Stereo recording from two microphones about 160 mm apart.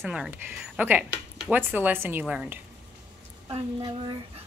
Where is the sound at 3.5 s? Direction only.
30° right (ahead or behind).